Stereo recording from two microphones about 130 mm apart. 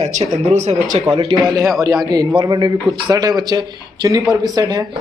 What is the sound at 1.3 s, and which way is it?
Speech, 35° right (ahead or behind).